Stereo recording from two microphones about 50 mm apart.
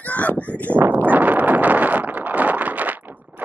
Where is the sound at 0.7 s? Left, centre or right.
Right.